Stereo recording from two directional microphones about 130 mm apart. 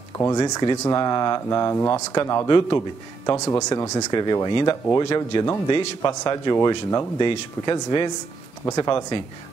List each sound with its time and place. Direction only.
0.2 s speech: 25° left (ahead or behind)
2.4 s speech: 40° left (ahead or behind)
3.3 s speech: 20° left (ahead or behind)